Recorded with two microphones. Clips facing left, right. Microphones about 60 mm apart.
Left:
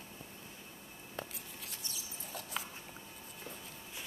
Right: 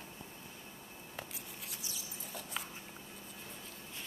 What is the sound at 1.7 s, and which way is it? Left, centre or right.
Rodents, centre.